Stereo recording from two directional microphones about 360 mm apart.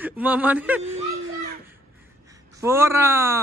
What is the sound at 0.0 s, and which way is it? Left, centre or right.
Speech, centre.